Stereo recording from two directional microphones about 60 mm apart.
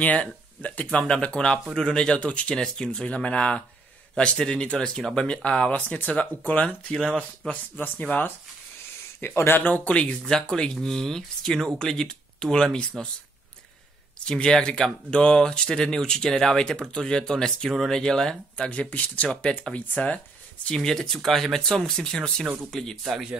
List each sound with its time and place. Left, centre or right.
0.0 s speech: left
5.7 s speech: left
6.9 s speech: centre
7.7 s speech: left
9.2 s speech: left
10.2 s speech: centre
14.2 s speech: centre
18.7 s speech: left
20.6 s speech: centre
23.0 s speech: centre